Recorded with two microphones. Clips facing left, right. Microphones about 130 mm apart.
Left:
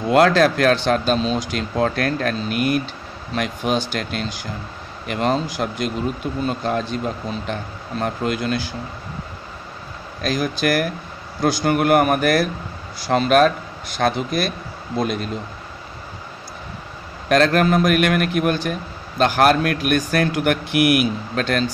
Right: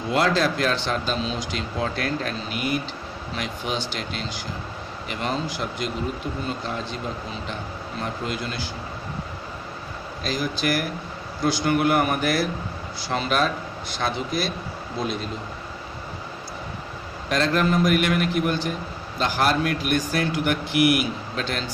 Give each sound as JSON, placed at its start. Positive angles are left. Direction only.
{"t": 0.1, "sound": "a man's voice", "side_deg": 60}
{"t": 8.0, "sound": "speech", "side_deg": 55}
{"t": 10.2, "sound": "a man's voice", "side_deg": 60}
{"t": 17.3, "sound": "speech", "side_deg": 65}